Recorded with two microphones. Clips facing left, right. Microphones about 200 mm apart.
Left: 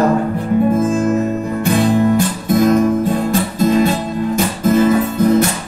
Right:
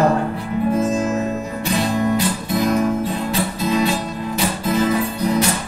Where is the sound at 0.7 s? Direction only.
50° left (ahead or behind).